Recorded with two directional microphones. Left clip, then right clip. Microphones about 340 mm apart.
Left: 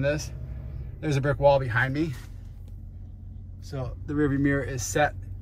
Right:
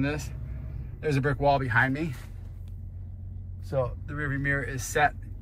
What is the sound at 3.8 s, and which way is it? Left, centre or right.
Speech, centre.